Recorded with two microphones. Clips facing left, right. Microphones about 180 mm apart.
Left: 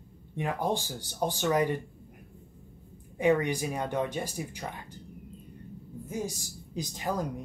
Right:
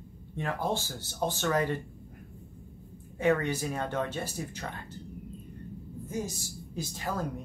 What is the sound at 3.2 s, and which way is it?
Speech, 15° left (ahead or behind).